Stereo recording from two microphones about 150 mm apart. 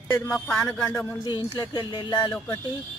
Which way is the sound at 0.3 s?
5° left (ahead or behind).